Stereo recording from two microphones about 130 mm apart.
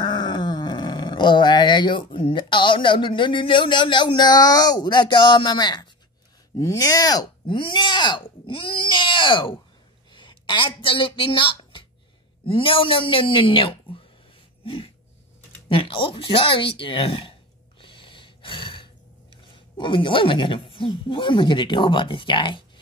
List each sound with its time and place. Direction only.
0.0 s speech: 40° left (ahead or behind)
14.6 s a sound: 45° left (ahead or behind)
19.5 s speech: 40° left (ahead or behind)